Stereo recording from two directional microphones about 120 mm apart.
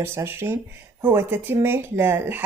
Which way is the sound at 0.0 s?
20° right (ahead or behind).